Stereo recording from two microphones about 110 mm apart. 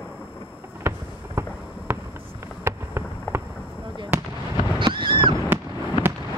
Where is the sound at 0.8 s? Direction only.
25° right (ahead or behind).